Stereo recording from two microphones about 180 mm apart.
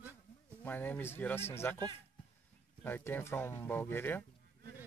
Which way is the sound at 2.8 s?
10° left (ahead or behind).